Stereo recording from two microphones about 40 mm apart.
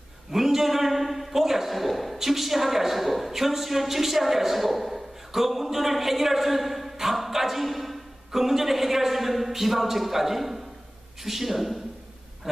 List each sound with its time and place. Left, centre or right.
0.3 s a man's voice: centre